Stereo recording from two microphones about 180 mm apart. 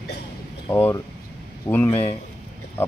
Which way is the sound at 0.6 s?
15° left (ahead or behind).